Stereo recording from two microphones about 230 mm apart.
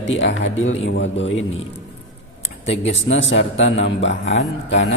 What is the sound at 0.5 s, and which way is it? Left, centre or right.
Speech, left.